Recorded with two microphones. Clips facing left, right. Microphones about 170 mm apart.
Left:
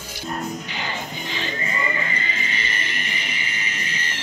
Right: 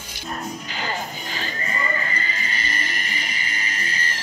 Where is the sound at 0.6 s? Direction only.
40° right (ahead or behind).